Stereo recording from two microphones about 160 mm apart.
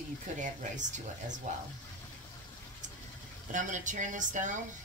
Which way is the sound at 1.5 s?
50° right (ahead or behind).